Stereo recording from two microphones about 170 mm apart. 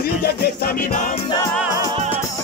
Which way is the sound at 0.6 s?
60° left (ahead or behind).